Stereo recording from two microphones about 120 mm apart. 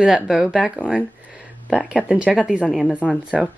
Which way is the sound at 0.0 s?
5° right (ahead or behind).